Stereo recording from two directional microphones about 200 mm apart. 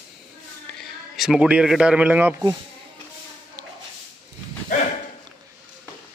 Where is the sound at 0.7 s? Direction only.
Centre (ahead or behind).